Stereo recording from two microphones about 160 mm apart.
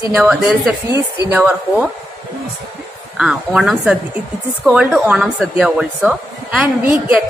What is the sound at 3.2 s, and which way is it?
A woman's voice, 5° right (ahead or behind).